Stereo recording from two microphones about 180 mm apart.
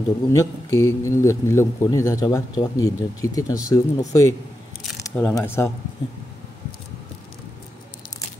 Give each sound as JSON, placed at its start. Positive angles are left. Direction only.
{"t": 0.3, "sound": "a man's voice", "side_deg": 15}
{"t": 4.8, "sound": "a man's voice", "side_deg": 5}